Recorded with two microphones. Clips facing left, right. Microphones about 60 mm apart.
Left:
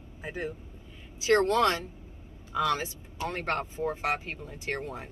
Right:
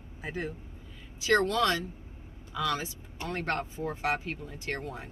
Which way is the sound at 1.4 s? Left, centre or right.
Left.